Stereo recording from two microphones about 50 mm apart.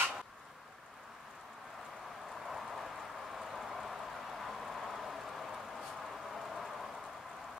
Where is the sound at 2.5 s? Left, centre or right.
Centre.